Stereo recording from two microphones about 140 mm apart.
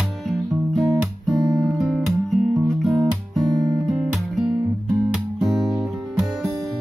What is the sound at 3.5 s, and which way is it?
Guitar, 25° right (ahead or behind).